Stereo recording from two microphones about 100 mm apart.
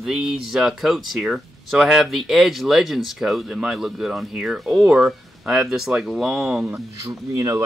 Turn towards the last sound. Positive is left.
turn(degrees=-30)  # may be behind; listen again after turning